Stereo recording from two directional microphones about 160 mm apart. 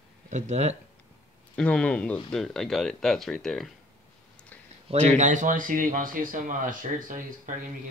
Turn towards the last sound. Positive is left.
turn(degrees=-55)  # may be behind; listen again after turning